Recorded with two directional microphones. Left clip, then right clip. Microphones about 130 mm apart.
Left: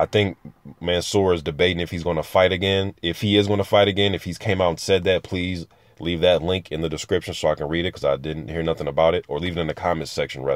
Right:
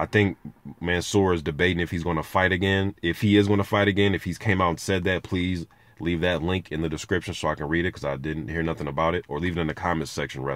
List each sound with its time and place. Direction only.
0.8 s speech: 15° left (ahead or behind)